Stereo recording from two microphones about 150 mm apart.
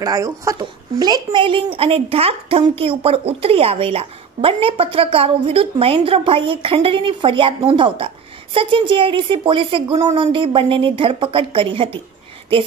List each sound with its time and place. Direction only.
0.0 s speech: 20° right (ahead or behind)